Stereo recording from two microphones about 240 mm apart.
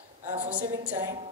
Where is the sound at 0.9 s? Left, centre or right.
Centre.